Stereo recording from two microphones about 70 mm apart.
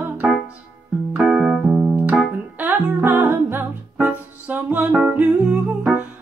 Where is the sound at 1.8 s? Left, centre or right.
Right.